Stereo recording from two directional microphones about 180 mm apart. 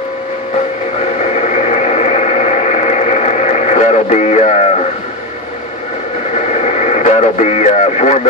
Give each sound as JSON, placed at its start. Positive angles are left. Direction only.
{"t": 1.3, "sound": "radio", "side_deg": 40}
{"t": 6.3, "sound": "radio", "side_deg": 40}